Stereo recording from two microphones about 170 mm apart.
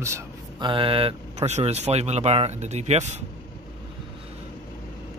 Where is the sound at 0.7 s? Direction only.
30° right (ahead or behind).